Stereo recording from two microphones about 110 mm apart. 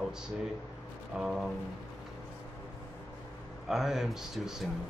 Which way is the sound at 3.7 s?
Centre (ahead or behind).